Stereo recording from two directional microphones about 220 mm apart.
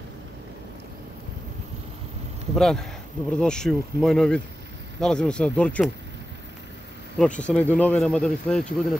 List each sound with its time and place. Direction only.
2.5 s speech: centre (ahead or behind)
7.2 s speech: 5° left (ahead or behind)